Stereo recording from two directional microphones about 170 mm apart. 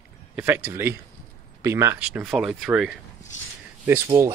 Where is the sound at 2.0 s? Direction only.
5° right (ahead or behind).